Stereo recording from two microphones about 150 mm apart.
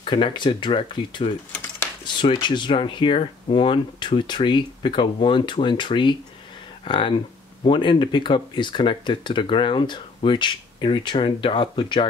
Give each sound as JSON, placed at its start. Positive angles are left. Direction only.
{"t": 0.0, "sound": "speech", "side_deg": 35}
{"t": 2.4, "sound": "speech", "side_deg": 30}